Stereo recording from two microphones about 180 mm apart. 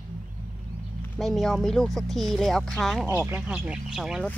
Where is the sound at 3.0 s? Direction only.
15° right (ahead or behind).